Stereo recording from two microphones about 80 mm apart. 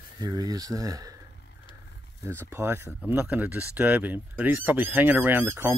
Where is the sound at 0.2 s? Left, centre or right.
Right.